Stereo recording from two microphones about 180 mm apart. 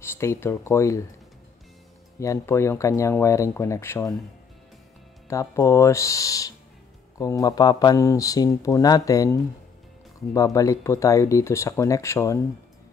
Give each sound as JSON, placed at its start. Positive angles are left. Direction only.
{"t": 0.0, "sound": "speech", "side_deg": 15}
{"t": 2.1, "sound": "speech", "side_deg": 15}
{"t": 5.3, "sound": "speech", "side_deg": 15}